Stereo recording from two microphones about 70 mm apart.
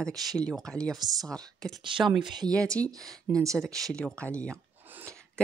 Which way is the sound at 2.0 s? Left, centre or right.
Centre.